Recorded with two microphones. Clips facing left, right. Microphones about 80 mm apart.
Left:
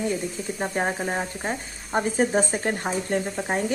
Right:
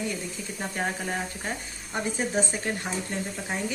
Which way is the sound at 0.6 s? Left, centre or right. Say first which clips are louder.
Left 5 dB; left.